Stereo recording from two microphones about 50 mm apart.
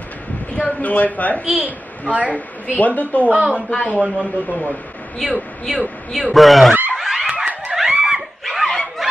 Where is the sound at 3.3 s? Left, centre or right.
Right.